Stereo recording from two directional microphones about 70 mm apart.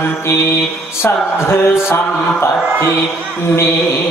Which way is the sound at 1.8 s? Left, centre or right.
Left.